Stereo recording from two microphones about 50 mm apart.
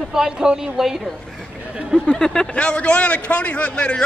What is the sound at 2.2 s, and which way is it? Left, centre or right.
Speech, centre.